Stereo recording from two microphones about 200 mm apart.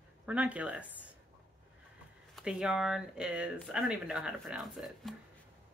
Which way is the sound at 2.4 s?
5° right (ahead or behind).